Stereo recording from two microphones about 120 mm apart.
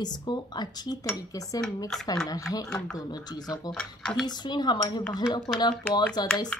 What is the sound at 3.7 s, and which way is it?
Mechanisms, 5° left (ahead or behind).